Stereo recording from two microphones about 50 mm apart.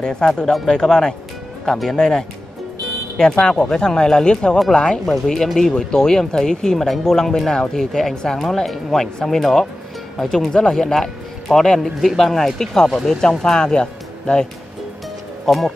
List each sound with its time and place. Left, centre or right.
0.0 s speech: centre
5.0 s speech: centre
5.6 s speech: centre
13.4 s speech: centre
15.4 s speech: centre